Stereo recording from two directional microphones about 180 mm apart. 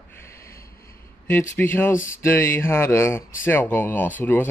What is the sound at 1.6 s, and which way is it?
Speech, 15° left (ahead or behind).